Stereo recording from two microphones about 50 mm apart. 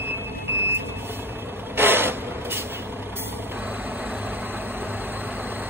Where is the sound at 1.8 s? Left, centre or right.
Right.